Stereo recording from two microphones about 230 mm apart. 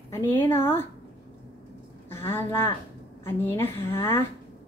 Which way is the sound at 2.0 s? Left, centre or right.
Centre.